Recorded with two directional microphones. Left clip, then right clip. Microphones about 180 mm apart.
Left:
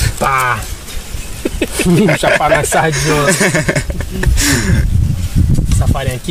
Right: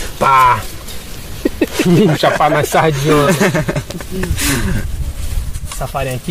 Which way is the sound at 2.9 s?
20° left (ahead or behind).